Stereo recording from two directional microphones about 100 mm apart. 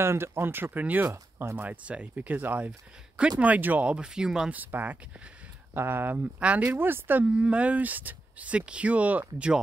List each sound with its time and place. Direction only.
0.0 s speech: 25° right (ahead or behind); by 4.6 s 5° right (ahead or behind)
4.6 s speech: 20° right (ahead or behind)